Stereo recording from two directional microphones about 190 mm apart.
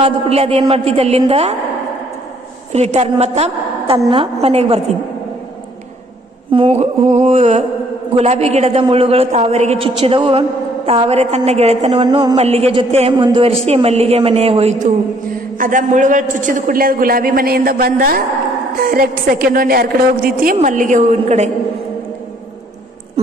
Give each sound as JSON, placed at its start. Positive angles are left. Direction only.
{"t": 0.0, "sound": "a woman's voice", "side_deg": -30}
{"t": 2.7, "sound": "a woman's voice", "side_deg": -35}
{"t": 6.5, "sound": "a woman's voice", "side_deg": -30}
{"t": 15.5, "sound": "a man's voice", "side_deg": -45}